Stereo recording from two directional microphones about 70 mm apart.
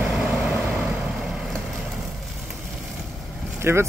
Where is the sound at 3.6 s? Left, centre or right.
Right.